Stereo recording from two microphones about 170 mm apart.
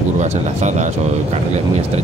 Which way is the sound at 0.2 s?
45° right (ahead or behind).